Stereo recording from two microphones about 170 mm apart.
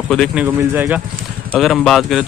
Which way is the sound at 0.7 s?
10° right (ahead or behind).